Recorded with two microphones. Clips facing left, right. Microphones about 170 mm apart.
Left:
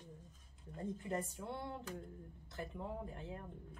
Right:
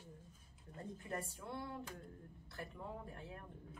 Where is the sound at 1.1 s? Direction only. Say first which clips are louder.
Left 2 dB; 20° left (ahead or behind).